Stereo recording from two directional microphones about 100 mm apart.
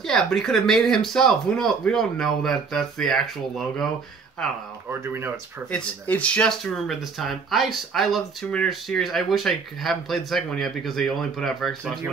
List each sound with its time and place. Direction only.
0.0 s speech: 5° left (ahead or behind)
4.8 s speech: 25° right (ahead or behind)
5.7 s speech: 15° left (ahead or behind)
6.6 s speech: centre (ahead or behind)